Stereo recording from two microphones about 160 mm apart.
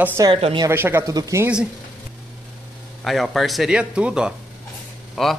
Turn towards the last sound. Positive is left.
turn(degrees=0)  # may be behind; listen again after turning